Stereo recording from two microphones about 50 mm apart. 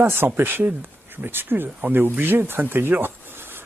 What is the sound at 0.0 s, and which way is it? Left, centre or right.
Speech, right.